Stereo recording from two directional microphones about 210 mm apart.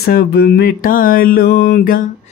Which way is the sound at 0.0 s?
50° left (ahead or behind).